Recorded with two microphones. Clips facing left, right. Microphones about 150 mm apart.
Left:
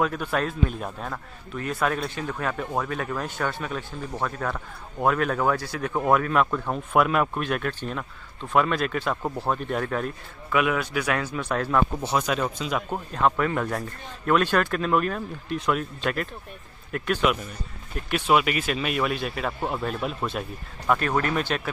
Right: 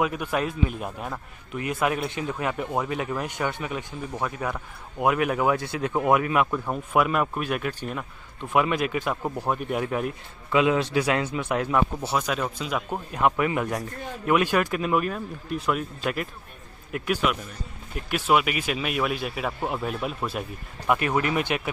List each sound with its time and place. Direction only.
0.0 s a man's voice: 10° right (ahead or behind)
13.1 s a man's voice: 15° right (ahead or behind)